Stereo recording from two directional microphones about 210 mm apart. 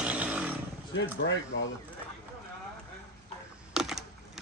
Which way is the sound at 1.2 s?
60° left (ahead or behind).